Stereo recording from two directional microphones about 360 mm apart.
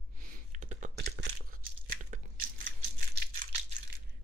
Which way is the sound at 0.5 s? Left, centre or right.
Centre.